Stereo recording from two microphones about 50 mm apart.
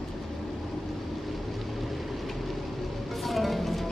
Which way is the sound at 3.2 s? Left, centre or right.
Centre.